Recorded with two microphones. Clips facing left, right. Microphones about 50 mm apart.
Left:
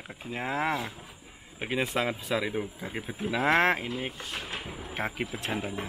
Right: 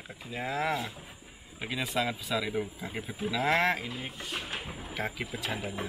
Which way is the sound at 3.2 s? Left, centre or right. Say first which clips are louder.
Left 3 dB; left.